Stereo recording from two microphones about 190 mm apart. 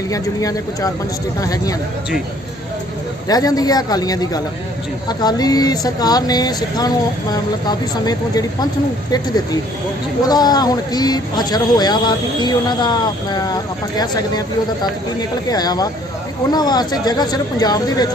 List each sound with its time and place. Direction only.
0.1 s a man's voice: 20° left (ahead or behind)
3.3 s a man's voice: 20° left (ahead or behind)
10.2 s a man's voice: 20° left (ahead or behind)